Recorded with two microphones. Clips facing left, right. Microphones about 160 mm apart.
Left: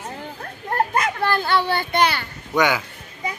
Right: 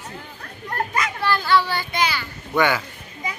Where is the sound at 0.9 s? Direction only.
50° left (ahead or behind).